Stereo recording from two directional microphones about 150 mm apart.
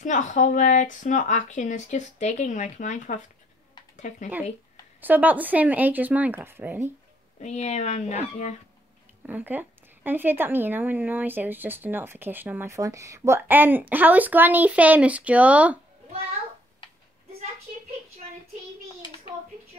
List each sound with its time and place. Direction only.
0.0 s speech: 55° left (ahead or behind)
5.0 s a woman's voice: 10° right (ahead or behind)
7.3 s speech: 45° left (ahead or behind)
9.2 s a woman's voice: 10° right (ahead or behind)